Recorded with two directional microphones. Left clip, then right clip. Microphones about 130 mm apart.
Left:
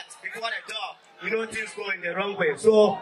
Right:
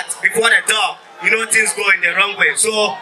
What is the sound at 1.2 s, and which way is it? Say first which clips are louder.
A man's voice: right 14 dB; 35° right (ahead or behind).